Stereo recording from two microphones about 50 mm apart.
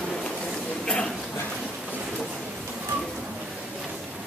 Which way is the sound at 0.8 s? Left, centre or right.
Centre.